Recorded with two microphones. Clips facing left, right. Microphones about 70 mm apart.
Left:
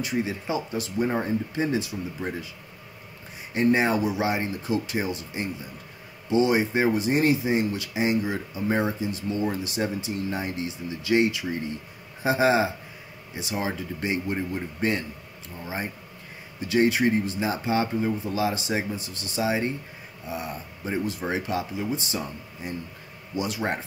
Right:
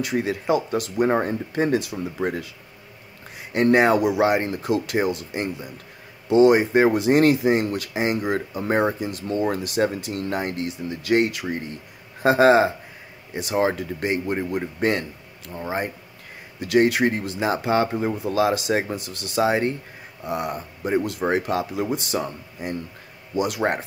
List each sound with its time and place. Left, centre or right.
0.0 s speech: right
3.5 s speech: right
4.5 s speech: right
6.2 s speech: right
6.9 s speech: right
14.5 s speech: right
16.6 s speech: right
18.1 s speech: right
19.4 s speech: right
20.2 s speech: right
23.6 s speech: right